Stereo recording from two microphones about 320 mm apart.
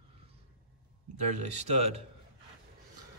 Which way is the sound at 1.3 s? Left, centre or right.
Right.